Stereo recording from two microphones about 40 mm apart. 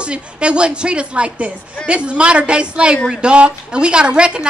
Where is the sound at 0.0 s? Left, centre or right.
Right.